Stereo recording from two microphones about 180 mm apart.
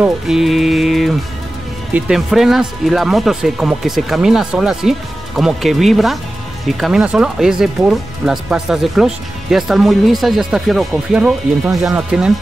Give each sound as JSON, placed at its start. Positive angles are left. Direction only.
{"t": 0.0, "sound": "music", "side_deg": 0}
{"t": 2.0, "sound": "speech", "side_deg": -5}